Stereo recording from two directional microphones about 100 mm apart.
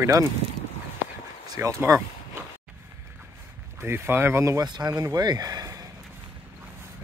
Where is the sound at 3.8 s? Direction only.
20° right (ahead or behind).